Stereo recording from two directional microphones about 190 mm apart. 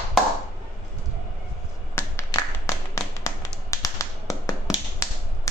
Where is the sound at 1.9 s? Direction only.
15° left (ahead or behind).